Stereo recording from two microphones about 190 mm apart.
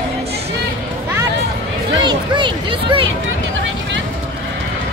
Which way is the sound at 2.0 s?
25° right (ahead or behind).